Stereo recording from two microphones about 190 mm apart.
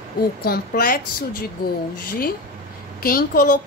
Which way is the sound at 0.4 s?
50° left (ahead or behind).